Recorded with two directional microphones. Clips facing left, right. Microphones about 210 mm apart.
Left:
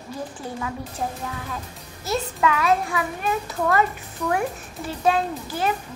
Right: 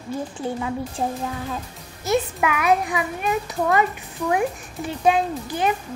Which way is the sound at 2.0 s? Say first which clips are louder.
Right 2 dB; 15° right (ahead or behind).